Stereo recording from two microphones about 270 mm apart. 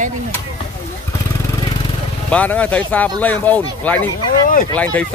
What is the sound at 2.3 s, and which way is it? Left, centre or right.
Speech, centre.